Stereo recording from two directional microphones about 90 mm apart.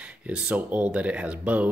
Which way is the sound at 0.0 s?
15° right (ahead or behind).